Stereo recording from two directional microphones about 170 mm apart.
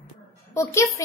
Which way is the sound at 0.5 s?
15° left (ahead or behind).